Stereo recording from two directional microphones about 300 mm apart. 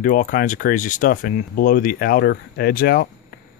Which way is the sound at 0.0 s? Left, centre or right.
Left.